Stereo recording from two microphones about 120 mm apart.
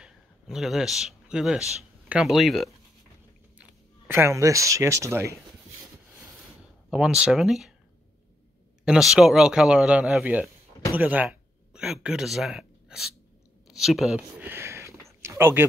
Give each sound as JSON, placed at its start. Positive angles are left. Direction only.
{"t": 0.0, "sound": "a man's voice", "side_deg": -5}
{"t": 4.1, "sound": "speech", "side_deg": -25}
{"t": 6.9, "sound": "speech", "side_deg": -5}
{"t": 8.8, "sound": "a man's voice", "side_deg": -5}
{"t": 14.4, "sound": "a sound", "side_deg": -20}